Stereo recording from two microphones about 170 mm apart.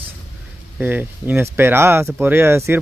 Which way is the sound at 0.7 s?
10° right (ahead or behind).